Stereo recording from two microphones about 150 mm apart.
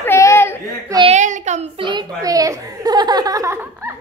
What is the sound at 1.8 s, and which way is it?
A child's voice, 30° right (ahead or behind).